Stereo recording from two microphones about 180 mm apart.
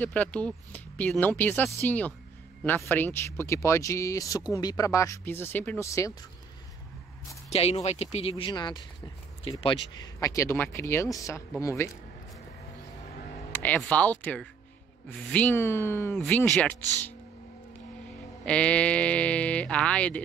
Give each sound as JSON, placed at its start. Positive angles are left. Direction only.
{"t": 0.0, "sound": "speech", "side_deg": 10}
{"t": 7.5, "sound": "speech", "side_deg": 35}
{"t": 13.5, "sound": "speech", "side_deg": 10}
{"t": 18.4, "sound": "speech", "side_deg": 5}